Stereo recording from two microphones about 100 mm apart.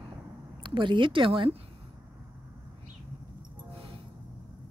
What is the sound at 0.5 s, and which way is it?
Speech, 55° right (ahead or behind).